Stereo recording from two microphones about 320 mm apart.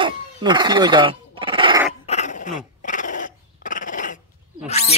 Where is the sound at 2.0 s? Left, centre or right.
Left.